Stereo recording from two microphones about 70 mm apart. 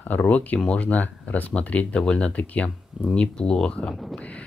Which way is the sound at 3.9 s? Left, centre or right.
Centre.